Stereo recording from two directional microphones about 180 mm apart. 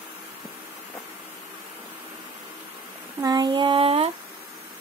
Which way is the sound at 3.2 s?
20° right (ahead or behind).